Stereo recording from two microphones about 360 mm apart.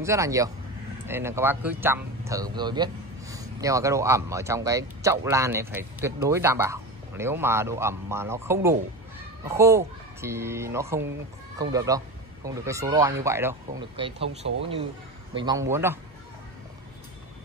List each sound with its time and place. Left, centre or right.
0.0 s speech: centre